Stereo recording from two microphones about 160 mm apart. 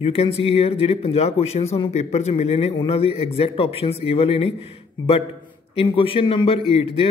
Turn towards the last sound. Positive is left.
turn(degrees=35)  # may be behind; listen again after turning